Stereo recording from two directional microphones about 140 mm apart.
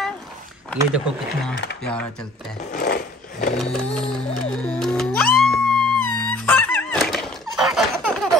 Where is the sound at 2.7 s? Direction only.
90° left.